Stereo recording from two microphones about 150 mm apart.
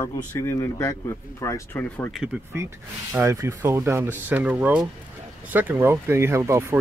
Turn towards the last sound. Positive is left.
turn(degrees=-20)  # may be behind; listen again after turning